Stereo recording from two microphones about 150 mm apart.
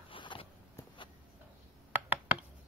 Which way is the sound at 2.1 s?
10° right (ahead or behind).